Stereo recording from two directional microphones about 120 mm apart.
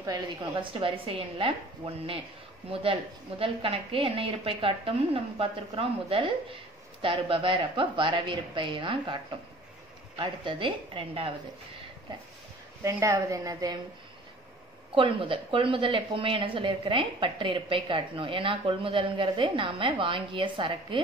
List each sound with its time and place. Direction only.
0.0 s a woman's voice: 35° right (ahead or behind)
0.7 s a woman's voice: 50° right (ahead or behind)
2.7 s a woman's voice: 50° right (ahead or behind)
12.8 s a woman's voice: 25° right (ahead or behind)
15.0 s a woman's voice: 45° right (ahead or behind)